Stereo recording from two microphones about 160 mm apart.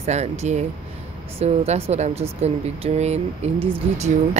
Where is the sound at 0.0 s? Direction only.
45° right (ahead or behind).